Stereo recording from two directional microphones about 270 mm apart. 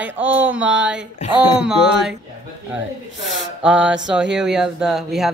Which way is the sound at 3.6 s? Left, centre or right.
Centre.